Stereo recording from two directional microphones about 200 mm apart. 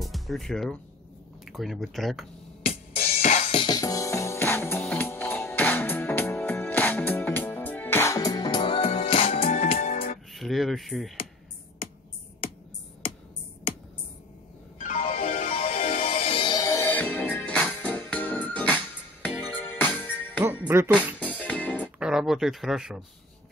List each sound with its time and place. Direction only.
0.0 s speech: centre (ahead or behind)
3.2 s music: 35° left (ahead or behind)
10.3 s speech: centre (ahead or behind)
14.8 s music: 35° left (ahead or behind); by 20.4 s 10° left (ahead or behind)
20.4 s music: 10° right (ahead or behind)
21.2 s music: 5° left (ahead or behind)
22.0 s speech: centre (ahead or behind)